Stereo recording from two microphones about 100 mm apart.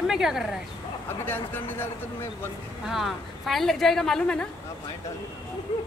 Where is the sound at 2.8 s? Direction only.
Centre (ahead or behind).